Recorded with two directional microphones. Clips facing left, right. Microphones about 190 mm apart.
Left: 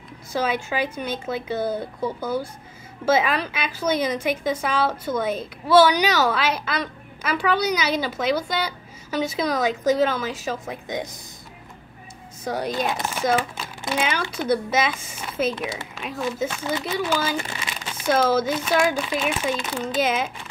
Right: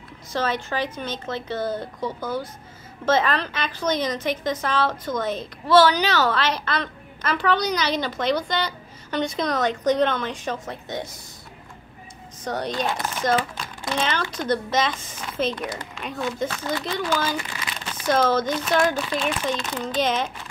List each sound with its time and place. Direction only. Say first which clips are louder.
0.3 s a woman's voice: left 1 dB; 10° left (ahead or behind)
12.4 s a woman's voice: left 1 dB; 10° left (ahead or behind)
17.4 s crumpling: left 2 dB; 25° left (ahead or behind)
18.0 s a woman's voice: left 1 dB; 5° left (ahead or behind)